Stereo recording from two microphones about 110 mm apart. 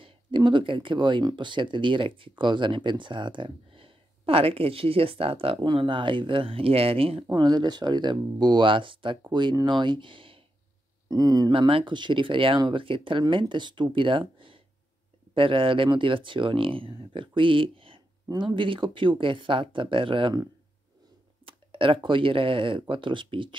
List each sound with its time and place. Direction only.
0.0 s speech: 45° right (ahead or behind)
7.3 s speech: 40° right (ahead or behind)
11.1 s speech: 35° right (ahead or behind)
11.5 s speech: 50° right (ahead or behind)
21.5 s speech: 55° right (ahead or behind)